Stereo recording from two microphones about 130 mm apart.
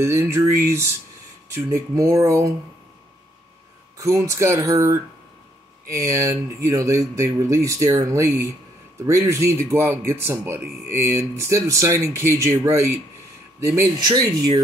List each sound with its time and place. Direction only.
0.0 s speech: 20° right (ahead or behind)
4.0 s speech: 25° right (ahead or behind)
14.0 s speech: 30° right (ahead or behind)